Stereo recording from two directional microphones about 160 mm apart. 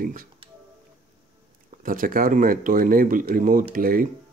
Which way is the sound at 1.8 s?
60° right (ahead or behind).